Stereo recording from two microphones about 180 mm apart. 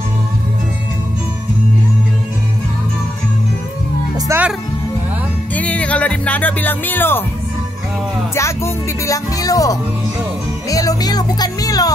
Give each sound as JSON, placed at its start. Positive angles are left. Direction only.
{"t": 4.3, "sound": "music", "side_deg": -10}
{"t": 5.5, "sound": "speech", "side_deg": 10}
{"t": 8.4, "sound": "speech", "side_deg": 15}